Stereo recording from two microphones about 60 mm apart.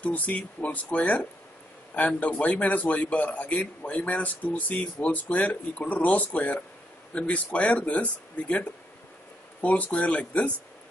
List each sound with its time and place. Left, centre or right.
0.0 s a man's voice: left